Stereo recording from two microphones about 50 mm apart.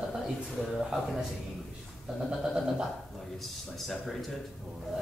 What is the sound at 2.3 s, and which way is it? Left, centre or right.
Speech, centre.